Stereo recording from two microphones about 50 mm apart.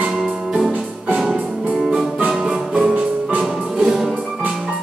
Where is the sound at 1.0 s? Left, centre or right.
Right.